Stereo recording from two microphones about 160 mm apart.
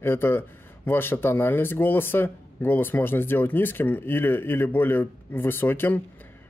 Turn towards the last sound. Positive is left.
turn(degrees=15)  # may be behind; listen again after turning